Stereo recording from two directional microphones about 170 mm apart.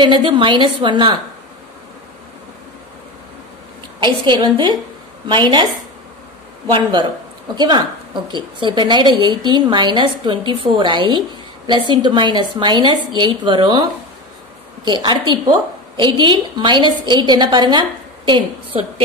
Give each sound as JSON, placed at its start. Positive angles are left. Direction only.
{"t": 0.0, "sound": "a woman's voice", "side_deg": -30}
{"t": 4.0, "sound": "a woman's voice", "side_deg": -25}
{"t": 6.7, "sound": "a woman's voice", "side_deg": -25}
{"t": 14.9, "sound": "a woman's voice", "side_deg": -25}